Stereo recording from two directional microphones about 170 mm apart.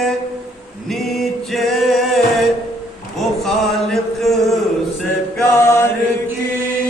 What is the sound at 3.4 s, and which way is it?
Chant, centre (ahead or behind).